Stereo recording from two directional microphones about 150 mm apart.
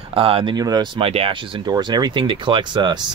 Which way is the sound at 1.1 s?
40° right (ahead or behind).